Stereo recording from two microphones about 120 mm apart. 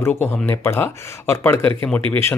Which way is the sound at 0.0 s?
20° left (ahead or behind).